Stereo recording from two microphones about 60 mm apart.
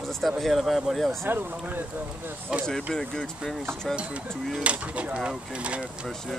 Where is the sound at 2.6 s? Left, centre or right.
Centre.